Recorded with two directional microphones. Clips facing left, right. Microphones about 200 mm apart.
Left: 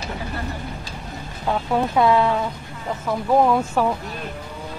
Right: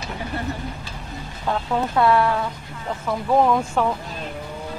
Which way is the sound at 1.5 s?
15° left (ahead or behind).